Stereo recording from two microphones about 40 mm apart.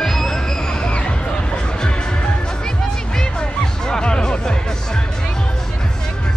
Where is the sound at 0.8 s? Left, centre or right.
Left.